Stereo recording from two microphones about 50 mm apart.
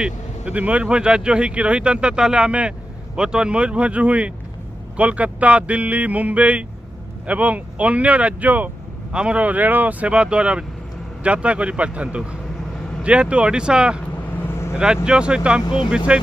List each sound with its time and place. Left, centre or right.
0.0 s speech: right
14.4 s vehicle: left
14.7 s speech: centre